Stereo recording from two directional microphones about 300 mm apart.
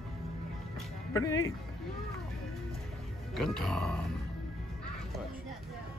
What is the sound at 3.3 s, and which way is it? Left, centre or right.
Speech, centre.